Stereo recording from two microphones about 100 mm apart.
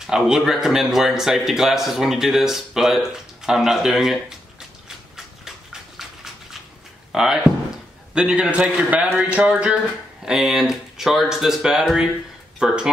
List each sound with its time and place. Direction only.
0.0 s a man's voice: 5° right (ahead or behind)
4.8 s a sound: 5° right (ahead or behind)
8.1 s a man's voice: 10° right (ahead or behind)